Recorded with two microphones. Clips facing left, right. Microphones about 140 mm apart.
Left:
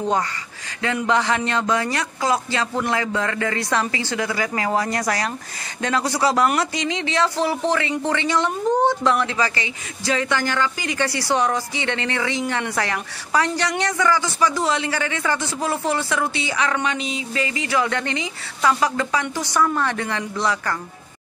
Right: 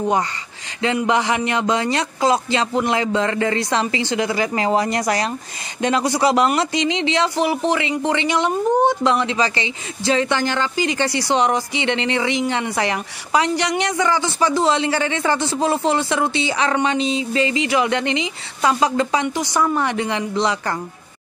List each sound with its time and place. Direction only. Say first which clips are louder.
1.0 s speech: left 1 dB; 15° right (ahead or behind)